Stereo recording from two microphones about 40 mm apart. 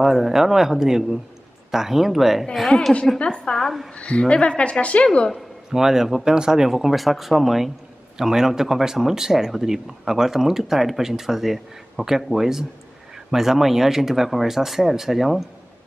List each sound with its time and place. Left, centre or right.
0.0 s speech: centre
3.2 s a woman's voice: left
5.7 s speech: centre
6.7 s speech: centre